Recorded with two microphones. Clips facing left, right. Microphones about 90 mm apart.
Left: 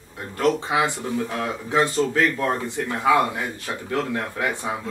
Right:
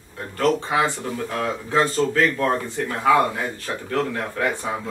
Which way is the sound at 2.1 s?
15° left (ahead or behind).